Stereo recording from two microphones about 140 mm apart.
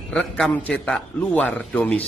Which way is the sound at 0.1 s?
5° left (ahead or behind).